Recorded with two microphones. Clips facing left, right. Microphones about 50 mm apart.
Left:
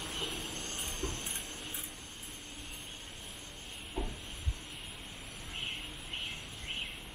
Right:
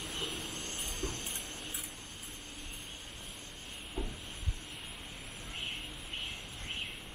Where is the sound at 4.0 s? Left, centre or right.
Centre.